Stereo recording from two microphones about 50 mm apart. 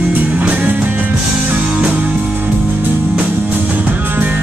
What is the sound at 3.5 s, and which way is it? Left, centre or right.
Music, right.